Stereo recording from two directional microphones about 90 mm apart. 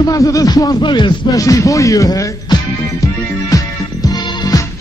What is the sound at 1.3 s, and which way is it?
Speech, 40° left (ahead or behind).